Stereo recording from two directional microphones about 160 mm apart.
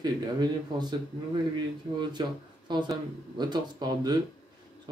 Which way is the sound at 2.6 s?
30° right (ahead or behind).